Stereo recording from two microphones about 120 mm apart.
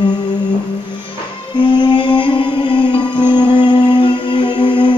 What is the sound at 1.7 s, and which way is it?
Music, 40° left (ahead or behind).